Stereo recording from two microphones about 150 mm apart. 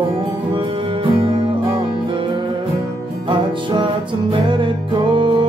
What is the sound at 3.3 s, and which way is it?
Music, 30° right (ahead or behind).